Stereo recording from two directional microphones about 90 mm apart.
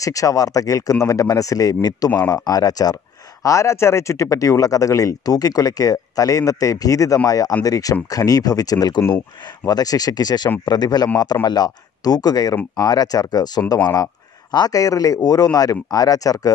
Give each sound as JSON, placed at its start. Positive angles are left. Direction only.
{"t": 0.0, "sound": "speech", "side_deg": 40}
{"t": 3.4, "sound": "speech", "side_deg": 35}